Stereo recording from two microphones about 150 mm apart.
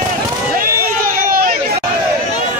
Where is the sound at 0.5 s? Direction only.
70° right (ahead or behind).